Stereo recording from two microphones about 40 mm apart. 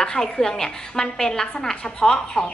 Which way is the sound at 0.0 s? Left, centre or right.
Centre.